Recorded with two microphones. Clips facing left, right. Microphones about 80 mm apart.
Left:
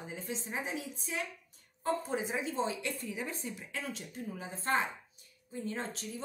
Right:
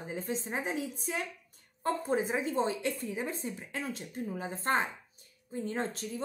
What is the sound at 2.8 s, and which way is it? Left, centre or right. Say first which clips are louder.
Speech: right 4 dB; right.